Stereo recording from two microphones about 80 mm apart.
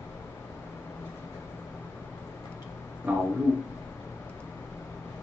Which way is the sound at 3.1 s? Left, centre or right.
Centre.